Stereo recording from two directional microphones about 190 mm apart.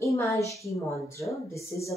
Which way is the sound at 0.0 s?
15° left (ahead or behind).